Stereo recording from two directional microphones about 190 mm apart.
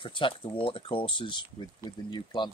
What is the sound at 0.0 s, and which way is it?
Speech, 25° left (ahead or behind).